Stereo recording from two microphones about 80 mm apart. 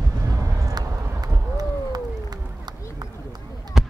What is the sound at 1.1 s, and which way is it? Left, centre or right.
Run, right.